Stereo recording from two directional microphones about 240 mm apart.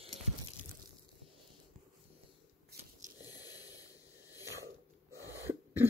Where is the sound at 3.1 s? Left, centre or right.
Centre.